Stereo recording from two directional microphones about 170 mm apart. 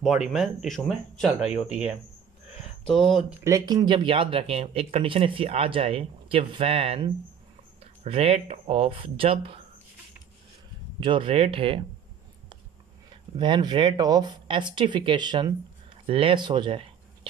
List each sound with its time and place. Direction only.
0.0 s speech: 5° right (ahead or behind)
3.3 s speech: 15° right (ahead or behind); by 9.6 s 35° right (ahead or behind)
11.0 s speech: 30° right (ahead or behind)
13.4 s speech: 25° right (ahead or behind)